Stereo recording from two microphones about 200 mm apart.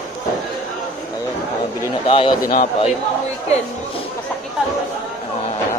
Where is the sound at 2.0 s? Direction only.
25° left (ahead or behind).